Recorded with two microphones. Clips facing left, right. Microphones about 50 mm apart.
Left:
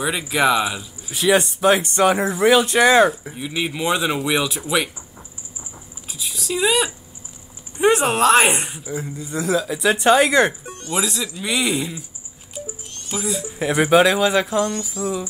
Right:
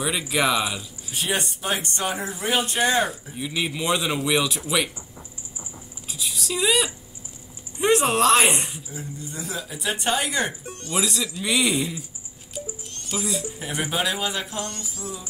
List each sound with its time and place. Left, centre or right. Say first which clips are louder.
0.0 s speech: left 4 dB; centre
1.1 s speech: left 9 dB; left
3.3 s speech: left 3 dB; centre
5.6 s patter: left 1 dB; centre
7.8 s speech: left 3 dB; centre
8.8 s speech: left 7 dB; left
10.8 s speech: left 2 dB; centre
12.5 s music: left 1 dB; centre
13.6 s speech: left 15 dB; left